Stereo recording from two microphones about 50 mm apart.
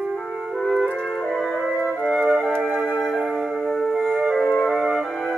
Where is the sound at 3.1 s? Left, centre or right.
Centre.